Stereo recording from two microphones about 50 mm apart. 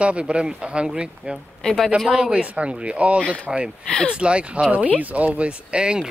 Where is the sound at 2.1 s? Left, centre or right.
Centre.